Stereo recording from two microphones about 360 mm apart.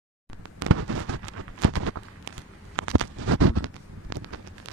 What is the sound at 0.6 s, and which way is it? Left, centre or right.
Fireworks, right.